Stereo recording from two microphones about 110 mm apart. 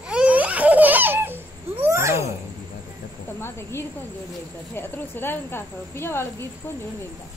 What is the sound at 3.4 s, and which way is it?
Speech, 25° left (ahead or behind).